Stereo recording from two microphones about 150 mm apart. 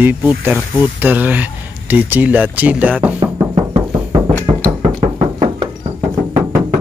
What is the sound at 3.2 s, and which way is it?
Music, 40° right (ahead or behind).